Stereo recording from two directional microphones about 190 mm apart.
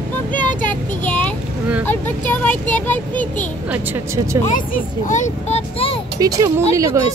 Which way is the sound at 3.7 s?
15° right (ahead or behind).